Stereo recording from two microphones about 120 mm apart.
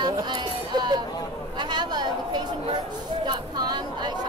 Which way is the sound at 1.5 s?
40° right (ahead or behind).